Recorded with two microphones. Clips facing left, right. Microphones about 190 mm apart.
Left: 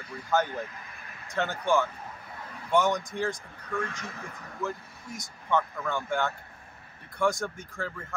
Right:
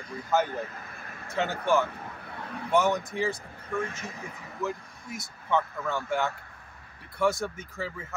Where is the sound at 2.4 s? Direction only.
65° right (ahead or behind).